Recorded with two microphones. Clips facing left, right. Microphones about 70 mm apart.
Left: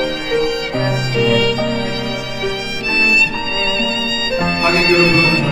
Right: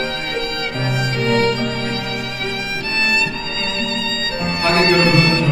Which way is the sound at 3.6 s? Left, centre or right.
Right.